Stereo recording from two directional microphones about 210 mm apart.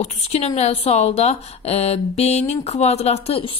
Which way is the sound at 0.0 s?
30° left (ahead or behind).